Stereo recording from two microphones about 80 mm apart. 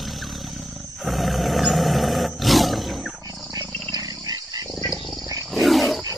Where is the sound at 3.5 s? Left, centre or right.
Right.